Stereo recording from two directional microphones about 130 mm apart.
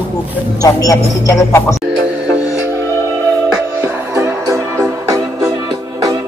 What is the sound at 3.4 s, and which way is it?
Music, 15° right (ahead or behind).